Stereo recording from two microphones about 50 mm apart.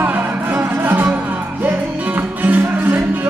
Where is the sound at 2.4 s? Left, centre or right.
Right.